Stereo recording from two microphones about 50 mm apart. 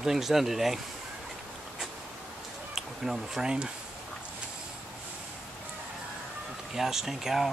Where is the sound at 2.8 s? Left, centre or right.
Centre.